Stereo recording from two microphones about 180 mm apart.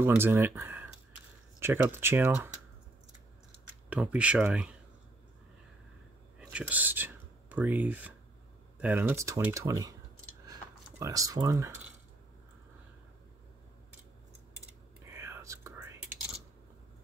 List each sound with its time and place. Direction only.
0.0 s speech: 10° right (ahead or behind)
3.9 s speech: 5° right (ahead or behind)
6.5 s speech: 10° right (ahead or behind)
10.4 s a sound: 20° right (ahead or behind)
15.0 s whispering: 15° right (ahead or behind)